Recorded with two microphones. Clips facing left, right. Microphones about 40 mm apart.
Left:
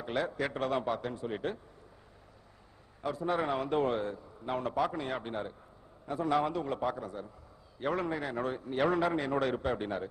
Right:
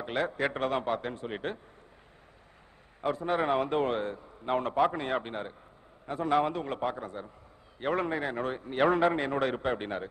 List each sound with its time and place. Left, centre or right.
0.0 s a man's voice: right
3.0 s a man's voice: right